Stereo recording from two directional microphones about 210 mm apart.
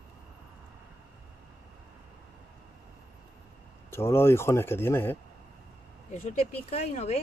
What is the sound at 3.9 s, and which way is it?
Speech, 10° left (ahead or behind).